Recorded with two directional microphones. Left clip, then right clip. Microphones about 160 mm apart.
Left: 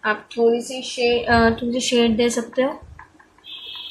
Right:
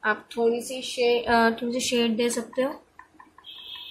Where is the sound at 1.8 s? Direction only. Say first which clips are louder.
Left 7 dB; centre (ahead or behind).